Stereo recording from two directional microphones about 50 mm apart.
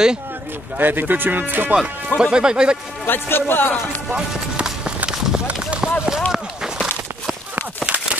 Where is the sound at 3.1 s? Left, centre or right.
Left.